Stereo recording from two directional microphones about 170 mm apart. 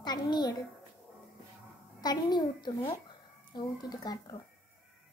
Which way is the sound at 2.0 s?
25° left (ahead or behind).